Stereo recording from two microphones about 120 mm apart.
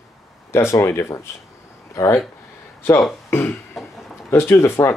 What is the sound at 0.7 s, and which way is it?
Speech, 25° left (ahead or behind).